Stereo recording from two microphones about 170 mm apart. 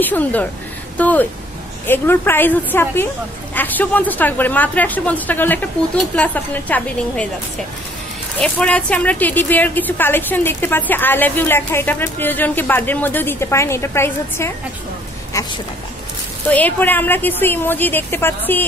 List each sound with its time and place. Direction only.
0.0 s a woman's voice: 10° left (ahead or behind)
8.4 s a woman's voice: 5° left (ahead or behind)